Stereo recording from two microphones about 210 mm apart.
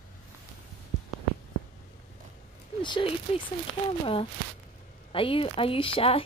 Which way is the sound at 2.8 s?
20° left (ahead or behind).